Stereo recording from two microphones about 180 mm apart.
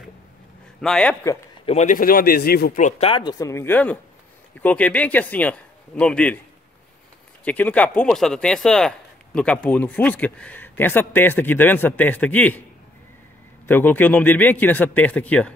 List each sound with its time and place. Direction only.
0.7 s a man's voice: 5° left (ahead or behind)
1.7 s speech: 45° left (ahead or behind); by 2.8 s 60° left (ahead or behind)
2.8 s speech: 30° left (ahead or behind); by 6.4 s 5° left (ahead or behind)
7.4 s speech: 10° left (ahead or behind)
13.7 s speech: 10° left (ahead or behind)